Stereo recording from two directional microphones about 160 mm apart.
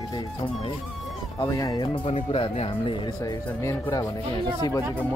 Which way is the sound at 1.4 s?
25° left (ahead or behind).